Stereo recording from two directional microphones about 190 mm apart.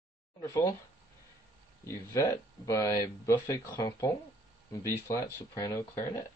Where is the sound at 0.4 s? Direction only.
15° left (ahead or behind).